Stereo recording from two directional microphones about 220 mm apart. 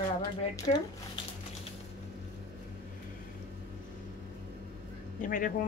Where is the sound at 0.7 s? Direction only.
25° left (ahead or behind).